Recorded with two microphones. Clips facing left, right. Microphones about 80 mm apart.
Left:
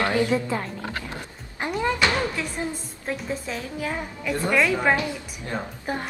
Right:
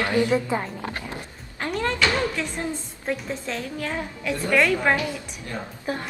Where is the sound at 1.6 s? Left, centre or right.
Centre.